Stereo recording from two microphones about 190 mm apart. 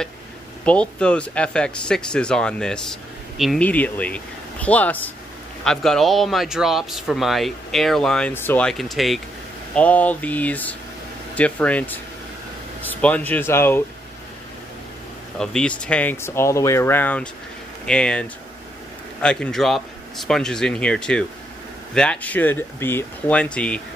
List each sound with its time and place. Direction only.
0.7 s speech: 5° left (ahead or behind)
13.0 s speech: 10° left (ahead or behind)
15.3 s speech: 5° left (ahead or behind)
19.2 s speech: 5° left (ahead or behind)